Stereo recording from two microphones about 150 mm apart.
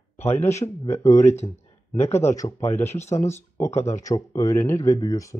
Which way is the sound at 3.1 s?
20° left (ahead or behind).